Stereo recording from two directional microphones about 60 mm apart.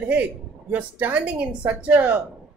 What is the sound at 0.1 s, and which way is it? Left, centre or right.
A woman's voice, right.